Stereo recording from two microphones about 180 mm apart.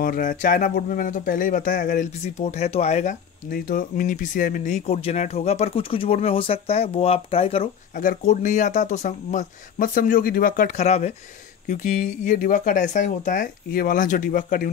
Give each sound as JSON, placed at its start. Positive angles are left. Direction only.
{"t": 0.0, "sound": "speech", "side_deg": 50}
{"t": 7.9, "sound": "speech", "side_deg": 50}